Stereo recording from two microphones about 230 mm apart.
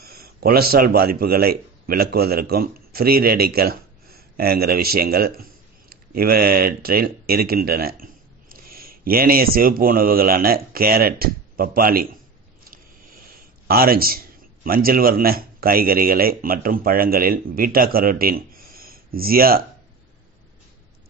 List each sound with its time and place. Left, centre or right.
0.0 s a man's voice: right
13.3 s a man's voice: right